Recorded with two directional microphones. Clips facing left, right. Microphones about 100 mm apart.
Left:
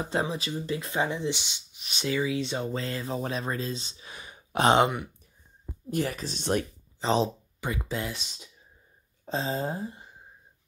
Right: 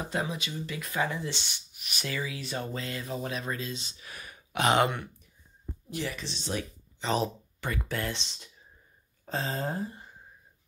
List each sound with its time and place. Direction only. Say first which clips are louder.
0.0 s speech: left 3 dB; 30° left (ahead or behind)
1.8 s speech: left 6 dB; 30° left (ahead or behind)
4.8 s speech: left 2 dB; 10° left (ahead or behind)
5.9 s speech: left 6 dB; 45° left (ahead or behind)
7.0 s speech: left 4 dB; 30° left (ahead or behind)
7.6 s speech: left 1 dB; 20° left (ahead or behind)
8.1 s speech: right 2 dB; 5° left (ahead or behind)
9.2 s speech: left 3 dB; 20° left (ahead or behind)